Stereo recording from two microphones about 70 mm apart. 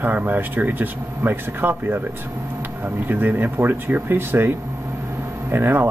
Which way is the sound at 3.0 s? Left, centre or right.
Right.